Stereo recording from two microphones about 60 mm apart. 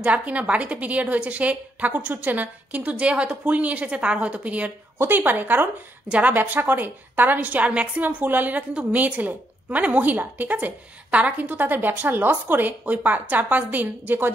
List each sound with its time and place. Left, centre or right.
0.0 s a woman's voice: right
4.9 s a woman's voice: right